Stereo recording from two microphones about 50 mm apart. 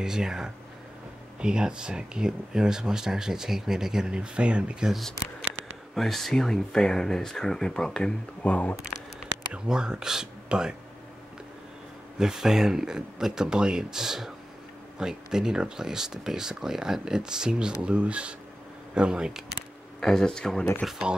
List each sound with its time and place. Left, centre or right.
0.0 s speech: centre
5.9 s speech: centre
8.4 s speech: left
9.5 s speech: centre
12.2 s speech: centre
20.0 s speech: centre
20.8 s speech: centre